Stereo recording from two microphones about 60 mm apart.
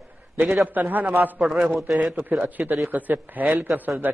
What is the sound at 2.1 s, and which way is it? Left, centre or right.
A man's voice, right.